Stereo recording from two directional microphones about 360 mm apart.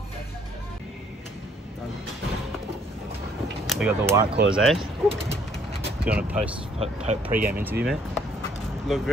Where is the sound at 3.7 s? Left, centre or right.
Centre.